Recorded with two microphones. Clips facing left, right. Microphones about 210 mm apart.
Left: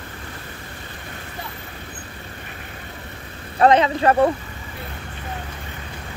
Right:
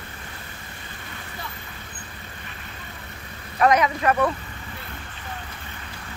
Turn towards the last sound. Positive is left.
turn(degrees=30)  # may be behind; listen again after turning